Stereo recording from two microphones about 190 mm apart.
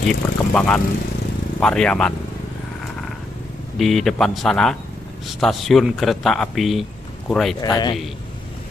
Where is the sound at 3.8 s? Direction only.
Centre (ahead or behind).